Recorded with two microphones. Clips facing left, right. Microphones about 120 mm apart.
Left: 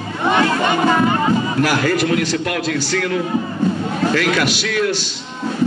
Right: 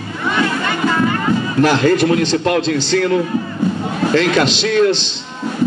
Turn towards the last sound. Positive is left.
turn(degrees=-25)  # may be behind; listen again after turning